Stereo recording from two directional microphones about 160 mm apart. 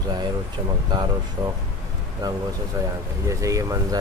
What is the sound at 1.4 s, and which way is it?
Speech, 20° right (ahead or behind).